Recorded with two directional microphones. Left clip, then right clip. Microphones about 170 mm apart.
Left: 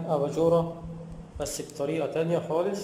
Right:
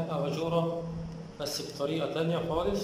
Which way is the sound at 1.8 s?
20° left (ahead or behind).